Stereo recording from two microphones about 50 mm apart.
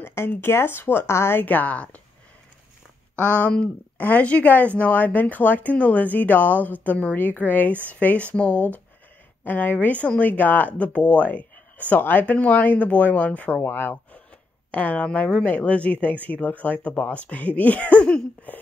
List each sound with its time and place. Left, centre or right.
0.0 s a woman's voice: left
1.4 s speech: left
3.2 s speech: left
9.4 s speech: left
13.6 s a woman's voice: left
14.7 s speech: left
18.5 s a sound: left